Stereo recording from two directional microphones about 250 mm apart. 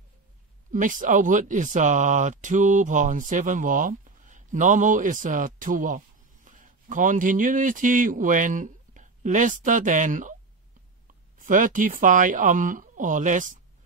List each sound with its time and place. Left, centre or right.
0.7 s speech: right
11.3 s speech: right